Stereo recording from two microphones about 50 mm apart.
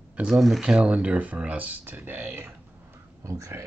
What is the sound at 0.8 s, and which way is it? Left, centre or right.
Speech, right.